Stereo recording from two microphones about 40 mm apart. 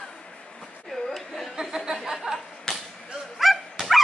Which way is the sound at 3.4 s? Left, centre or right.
Centre.